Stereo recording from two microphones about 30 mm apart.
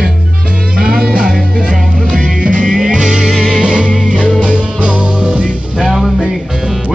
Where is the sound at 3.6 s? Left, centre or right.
Right.